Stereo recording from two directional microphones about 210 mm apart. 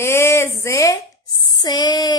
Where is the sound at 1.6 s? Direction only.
20° left (ahead or behind).